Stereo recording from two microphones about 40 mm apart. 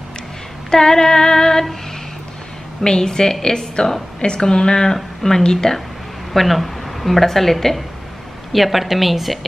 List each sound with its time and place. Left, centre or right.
0.7 s female singing: centre
2.8 s female singing: centre
4.2 s speech: left
4.9 s female singing: centre
6.3 s a woman's voice: centre